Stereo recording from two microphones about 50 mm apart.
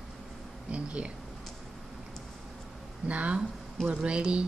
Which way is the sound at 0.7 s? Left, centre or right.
Right.